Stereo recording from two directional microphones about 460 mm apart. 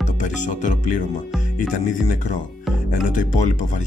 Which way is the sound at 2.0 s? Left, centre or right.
Centre.